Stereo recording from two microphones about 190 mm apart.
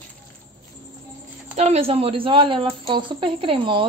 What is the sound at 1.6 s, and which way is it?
A woman's voice, 35° right (ahead or behind).